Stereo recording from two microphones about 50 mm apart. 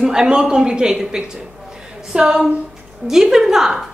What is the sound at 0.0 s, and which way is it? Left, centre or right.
A woman's voice, centre.